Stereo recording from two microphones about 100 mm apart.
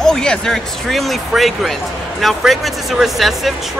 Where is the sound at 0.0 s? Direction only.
5° left (ahead or behind).